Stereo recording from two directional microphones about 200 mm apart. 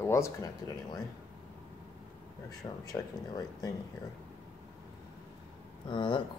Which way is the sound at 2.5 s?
20° left (ahead or behind).